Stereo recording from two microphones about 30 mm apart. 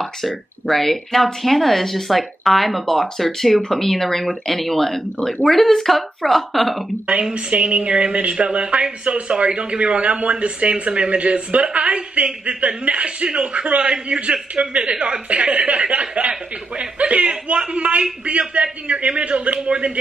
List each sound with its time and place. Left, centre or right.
0.7 s a woman's voice: centre
7.3 s speech: right
9.3 s speech: right
15.2 s speech: right